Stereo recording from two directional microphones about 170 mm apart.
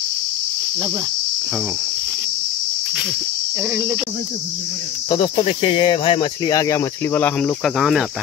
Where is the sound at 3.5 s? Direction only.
20° right (ahead or behind).